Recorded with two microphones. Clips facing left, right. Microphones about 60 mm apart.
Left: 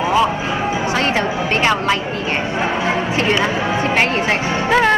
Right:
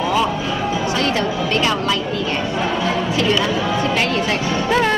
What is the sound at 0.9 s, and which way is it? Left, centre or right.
Music, left.